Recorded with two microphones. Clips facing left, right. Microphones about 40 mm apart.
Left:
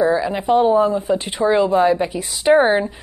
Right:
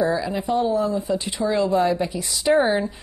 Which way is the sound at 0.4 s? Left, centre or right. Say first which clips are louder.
Left 8 dB; left.